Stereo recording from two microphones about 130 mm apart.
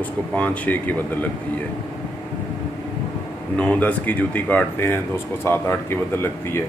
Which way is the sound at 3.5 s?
10° left (ahead or behind).